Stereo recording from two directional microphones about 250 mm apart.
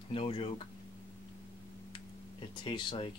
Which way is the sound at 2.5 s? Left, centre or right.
Centre.